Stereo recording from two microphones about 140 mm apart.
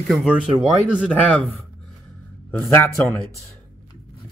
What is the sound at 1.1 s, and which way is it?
Speech, 10° left (ahead or behind).